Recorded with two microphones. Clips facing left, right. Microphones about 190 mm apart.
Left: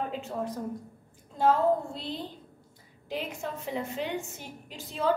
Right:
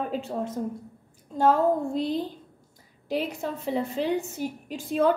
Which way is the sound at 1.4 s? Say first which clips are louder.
Right 3 dB; 45° right (ahead or behind).